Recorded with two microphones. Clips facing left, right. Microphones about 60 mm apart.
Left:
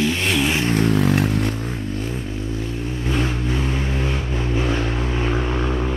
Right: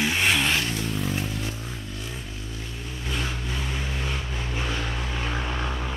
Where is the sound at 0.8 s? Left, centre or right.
Left.